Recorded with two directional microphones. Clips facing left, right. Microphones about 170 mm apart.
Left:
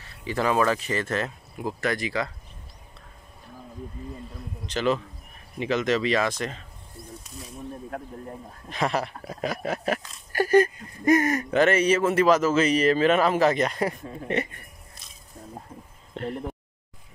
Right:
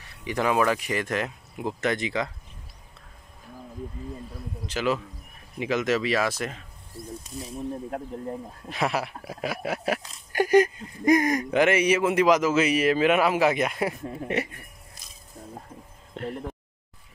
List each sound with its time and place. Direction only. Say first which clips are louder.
0.0 s speech: even; 15° right (ahead or behind)
4.6 s speech: left 2 dB; 5° right (ahead or behind)
8.6 s speech: left 1 dB; 5° right (ahead or behind)
16.1 s speech: left 1 dB; 5° right (ahead or behind)